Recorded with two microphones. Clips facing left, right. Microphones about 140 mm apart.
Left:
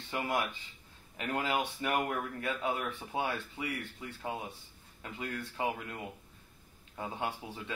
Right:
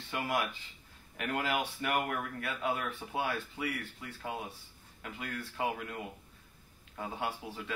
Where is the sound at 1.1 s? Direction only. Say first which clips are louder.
Even; 25° left (ahead or behind).